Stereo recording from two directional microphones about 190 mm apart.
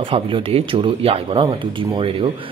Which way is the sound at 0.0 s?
30° right (ahead or behind).